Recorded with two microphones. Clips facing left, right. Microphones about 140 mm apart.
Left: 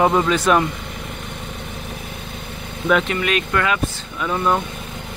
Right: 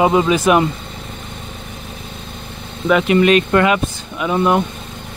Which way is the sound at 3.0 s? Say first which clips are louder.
Right 9 dB; 20° right (ahead or behind).